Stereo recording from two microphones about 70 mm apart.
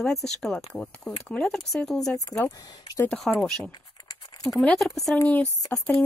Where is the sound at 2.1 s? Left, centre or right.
Left.